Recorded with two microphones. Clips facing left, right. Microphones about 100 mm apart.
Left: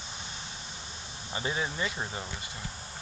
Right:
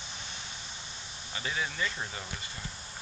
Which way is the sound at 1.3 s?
25° left (ahead or behind).